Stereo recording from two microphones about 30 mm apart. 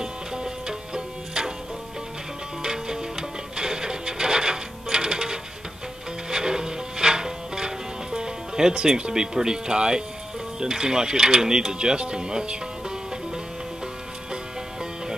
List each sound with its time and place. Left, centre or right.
0.0 s music: right
2.6 s music: right
10.6 s speech: right
14.3 s music: right